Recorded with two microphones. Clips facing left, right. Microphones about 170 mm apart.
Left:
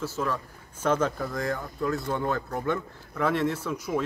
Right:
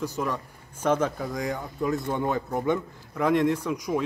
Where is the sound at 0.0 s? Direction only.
15° right (ahead or behind).